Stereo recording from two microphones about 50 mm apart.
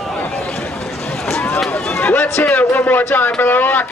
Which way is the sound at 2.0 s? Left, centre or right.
Left.